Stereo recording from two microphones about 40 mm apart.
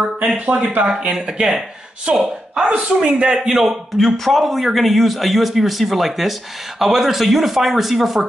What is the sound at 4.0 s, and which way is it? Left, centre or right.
A man's voice, centre.